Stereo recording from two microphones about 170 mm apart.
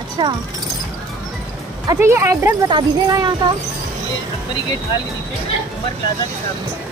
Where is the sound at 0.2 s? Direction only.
25° right (ahead or behind).